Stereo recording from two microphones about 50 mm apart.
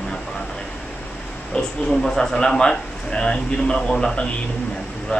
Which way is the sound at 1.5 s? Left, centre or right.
Centre.